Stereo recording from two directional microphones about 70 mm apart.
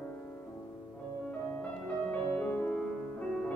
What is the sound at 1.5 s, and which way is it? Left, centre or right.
Music, left.